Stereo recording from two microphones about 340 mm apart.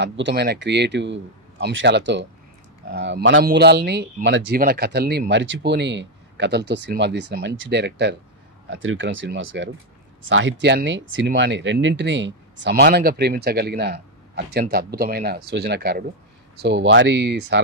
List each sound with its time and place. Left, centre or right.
0.0 s a man's voice: right